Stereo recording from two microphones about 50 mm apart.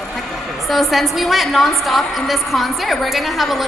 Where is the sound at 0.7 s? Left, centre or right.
Centre.